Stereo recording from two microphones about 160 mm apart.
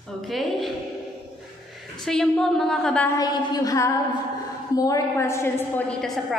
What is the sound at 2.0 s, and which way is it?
A woman's voice, centre (ahead or behind).